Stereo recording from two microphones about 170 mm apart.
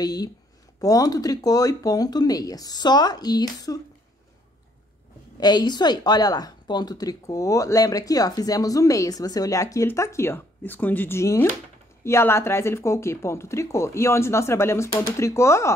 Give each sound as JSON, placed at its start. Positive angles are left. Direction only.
{"t": 0.0, "sound": "a woman's voice", "side_deg": 20}
{"t": 5.4, "sound": "a woman's voice", "side_deg": 25}